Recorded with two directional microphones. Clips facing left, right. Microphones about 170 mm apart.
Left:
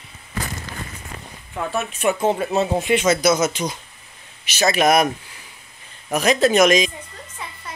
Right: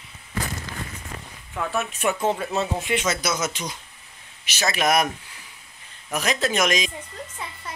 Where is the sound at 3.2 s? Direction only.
45° left (ahead or behind).